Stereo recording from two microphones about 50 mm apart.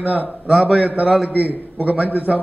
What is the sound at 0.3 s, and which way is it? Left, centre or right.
Speech, centre.